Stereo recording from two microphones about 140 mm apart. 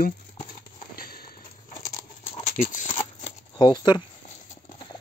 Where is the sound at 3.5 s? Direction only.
30° left (ahead or behind).